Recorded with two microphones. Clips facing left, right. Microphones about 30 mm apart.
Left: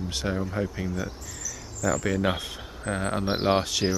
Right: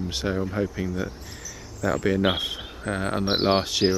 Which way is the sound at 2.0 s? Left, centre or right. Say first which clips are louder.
Right 4 dB; right.